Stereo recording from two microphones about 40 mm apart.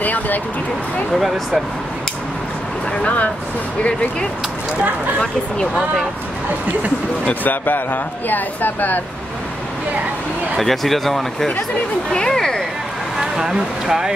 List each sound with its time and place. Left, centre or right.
0.0 s a sound: left
1.1 s speech: centre
3.0 s speech: left
7.4 s speech: left
10.6 s speech: centre
12.1 s speech: centre
13.2 s speech: centre